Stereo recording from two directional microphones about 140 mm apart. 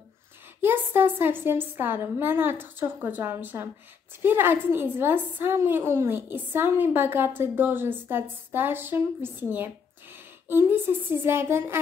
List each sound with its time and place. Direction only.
0.6 s a woman's voice: 15° right (ahead or behind)